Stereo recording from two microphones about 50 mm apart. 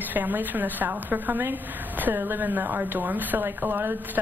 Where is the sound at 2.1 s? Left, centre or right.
Right.